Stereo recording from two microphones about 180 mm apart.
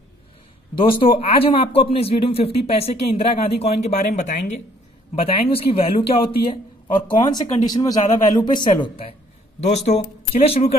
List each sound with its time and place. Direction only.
0.7 s speech: 30° left (ahead or behind)